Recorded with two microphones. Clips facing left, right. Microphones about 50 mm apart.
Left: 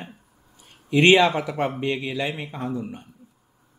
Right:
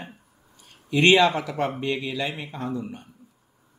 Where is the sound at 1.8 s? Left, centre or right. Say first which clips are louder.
Left 1 dB; centre.